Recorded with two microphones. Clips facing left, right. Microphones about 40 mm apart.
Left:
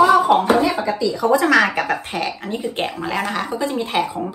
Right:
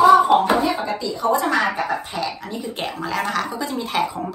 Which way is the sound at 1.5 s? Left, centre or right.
Left.